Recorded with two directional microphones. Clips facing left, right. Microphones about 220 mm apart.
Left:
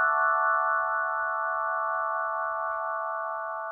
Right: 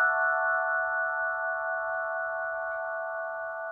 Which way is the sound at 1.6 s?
30° right (ahead or behind).